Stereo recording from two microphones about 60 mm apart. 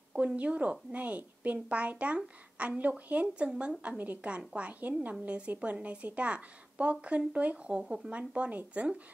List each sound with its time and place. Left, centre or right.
0.1 s a woman's voice: right
4.4 s speech: centre
4.6 s a woman's voice: right